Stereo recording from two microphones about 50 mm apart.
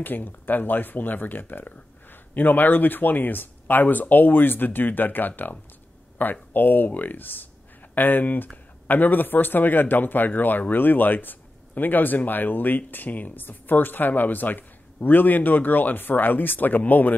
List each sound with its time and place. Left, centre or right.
0.0 s speech: left